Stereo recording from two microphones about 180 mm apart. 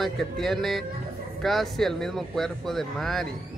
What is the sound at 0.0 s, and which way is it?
Speech, centre (ahead or behind).